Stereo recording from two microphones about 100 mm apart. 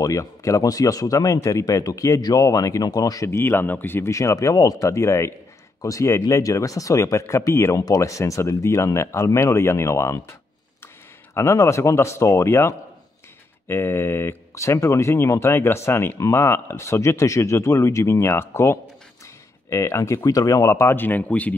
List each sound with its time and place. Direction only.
0.0 s speech: 30° left (ahead or behind)
3.3 s speech: 25° left (ahead or behind)
11.3 s speech: 30° left (ahead or behind)